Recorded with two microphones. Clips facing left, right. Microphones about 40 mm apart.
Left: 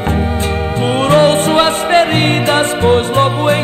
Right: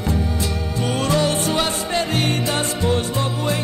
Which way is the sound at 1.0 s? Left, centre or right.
Left.